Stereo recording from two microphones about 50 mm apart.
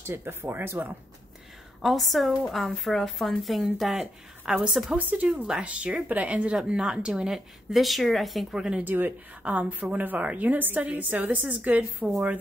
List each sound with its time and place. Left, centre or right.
0.0 s speech: right
0.6 s a woman's voice: right
1.8 s speech: centre
4.5 s a woman's voice: centre
4.9 s a woman's voice: right
7.3 s speech: centre
8.5 s a woman's voice: centre
8.8 s a woman's voice: right
9.4 s a woman's voice: right